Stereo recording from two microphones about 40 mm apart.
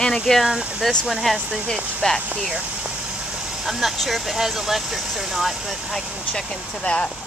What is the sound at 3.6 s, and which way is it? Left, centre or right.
Speech, centre.